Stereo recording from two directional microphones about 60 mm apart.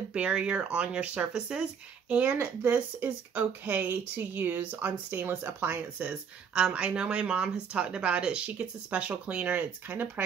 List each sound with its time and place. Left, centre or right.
0.1 s speech: centre; by 5.8 s right
5.9 s speech: centre